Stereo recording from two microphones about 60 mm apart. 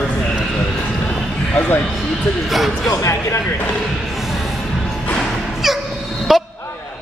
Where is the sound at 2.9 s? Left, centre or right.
Left.